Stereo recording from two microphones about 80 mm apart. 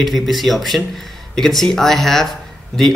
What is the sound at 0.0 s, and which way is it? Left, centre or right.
Speech, centre.